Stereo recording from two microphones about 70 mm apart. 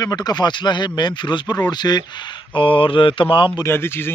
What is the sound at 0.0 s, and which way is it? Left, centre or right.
Speech, left.